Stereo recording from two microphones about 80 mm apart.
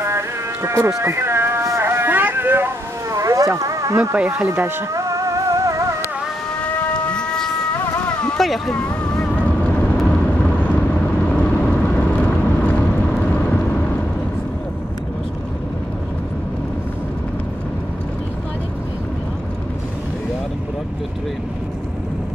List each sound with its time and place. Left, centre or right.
0.0 s music: right
1.0 s a sound: right
3.1 s a sound: right
4.3 s speech: right
4.9 s music: right
6.6 s cat: centre
8.0 s a sound: centre
8.4 s speech: centre
9.3 s vehicle: centre